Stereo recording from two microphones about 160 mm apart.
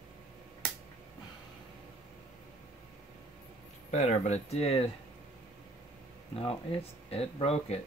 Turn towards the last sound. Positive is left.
turn(degrees=40)  # may be behind; listen again after turning